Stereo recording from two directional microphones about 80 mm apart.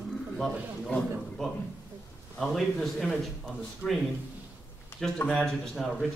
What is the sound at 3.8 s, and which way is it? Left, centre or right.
Speech, left.